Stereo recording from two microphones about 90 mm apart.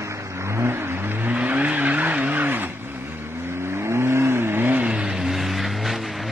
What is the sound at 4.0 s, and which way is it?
Vehicle, 30° right (ahead or behind).